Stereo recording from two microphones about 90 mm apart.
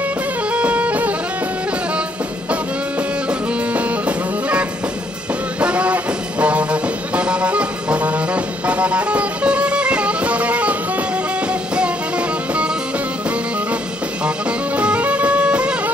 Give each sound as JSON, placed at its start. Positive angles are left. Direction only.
{"t": 0.5, "sound": "music", "side_deg": -15}
{"t": 3.3, "sound": "music", "side_deg": -15}
{"t": 14.8, "sound": "music", "side_deg": -15}